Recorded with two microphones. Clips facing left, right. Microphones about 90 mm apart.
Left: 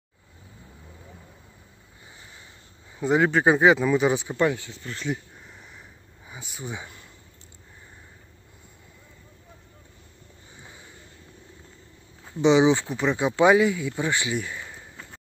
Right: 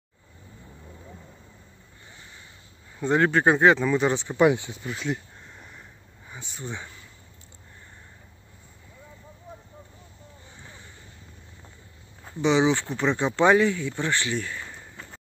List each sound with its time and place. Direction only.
3.0 s speech: 5° left (ahead or behind)
4.4 s speech: 20° right (ahead or behind)
4.9 s a sound: centre (ahead or behind)
6.2 s speech: 5° left (ahead or behind)
12.4 s speech: 20° left (ahead or behind); by 15.1 s 5° left (ahead or behind)